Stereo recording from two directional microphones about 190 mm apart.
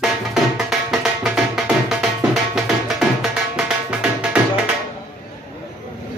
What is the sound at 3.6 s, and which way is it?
Tabla, 5° right (ahead or behind).